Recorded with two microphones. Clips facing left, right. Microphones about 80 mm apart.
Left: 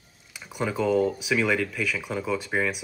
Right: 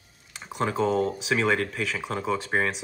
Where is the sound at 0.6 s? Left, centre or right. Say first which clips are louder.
Left 1 dB; right.